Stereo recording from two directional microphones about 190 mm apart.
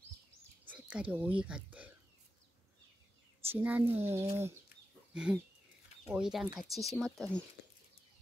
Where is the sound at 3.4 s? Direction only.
10° right (ahead or behind).